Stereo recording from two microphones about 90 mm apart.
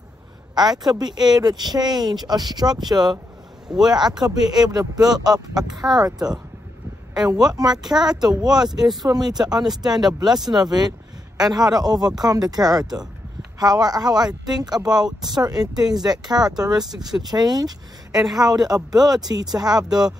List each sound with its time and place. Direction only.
0.6 s speech: 50° right (ahead or behind)
3.6 s speech: 5° right (ahead or behind)
4.5 s speech: 45° right (ahead or behind)
7.2 s speech: 50° right (ahead or behind)
10.4 s speech: 5° right (ahead or behind)
11.4 s speech: 50° right (ahead or behind)
18.1 s a woman's voice: 5° right (ahead or behind)
18.4 s speech: 45° right (ahead or behind)